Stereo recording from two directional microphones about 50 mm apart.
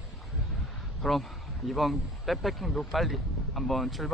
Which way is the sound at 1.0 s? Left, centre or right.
Centre.